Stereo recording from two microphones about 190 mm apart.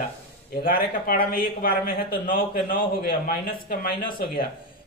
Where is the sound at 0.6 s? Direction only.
50° left (ahead or behind).